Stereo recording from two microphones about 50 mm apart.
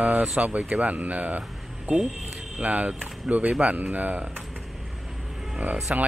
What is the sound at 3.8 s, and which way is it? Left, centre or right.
Speech, right.